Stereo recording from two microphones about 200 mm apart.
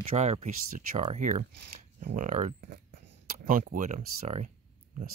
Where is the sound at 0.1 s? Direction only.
35° right (ahead or behind).